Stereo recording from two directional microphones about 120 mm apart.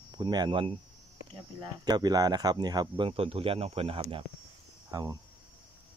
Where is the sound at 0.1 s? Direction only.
35° right (ahead or behind).